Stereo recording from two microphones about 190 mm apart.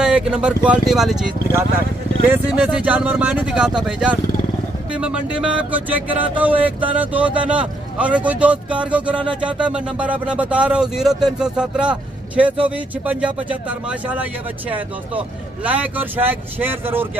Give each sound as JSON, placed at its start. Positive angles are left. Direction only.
{"t": 0.0, "sound": "speech", "side_deg": -5}
{"t": 2.2, "sound": "a man's voice", "side_deg": -10}